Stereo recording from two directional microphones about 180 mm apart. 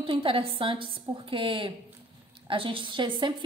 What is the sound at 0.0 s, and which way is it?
A woman's voice, 30° right (ahead or behind).